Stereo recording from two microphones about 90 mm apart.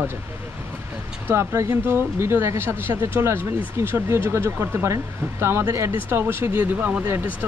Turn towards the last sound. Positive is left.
turn(degrees=-20)  # may be behind; listen again after turning